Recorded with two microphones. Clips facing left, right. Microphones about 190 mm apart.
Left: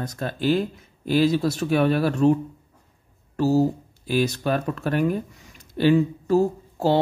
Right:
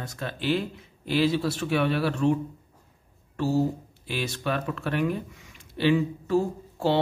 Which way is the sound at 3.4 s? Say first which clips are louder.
Left 5 dB; 40° left (ahead or behind).